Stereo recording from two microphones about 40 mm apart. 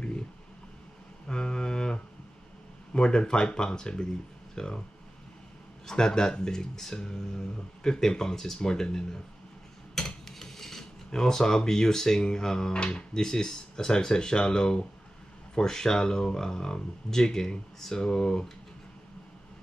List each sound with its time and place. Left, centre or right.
1.2 s mantra: left
2.9 s speech: left
5.9 s speech: centre
9.9 s a sound: centre
11.1 s speech: centre
12.7 s speech: left
13.1 s speech: centre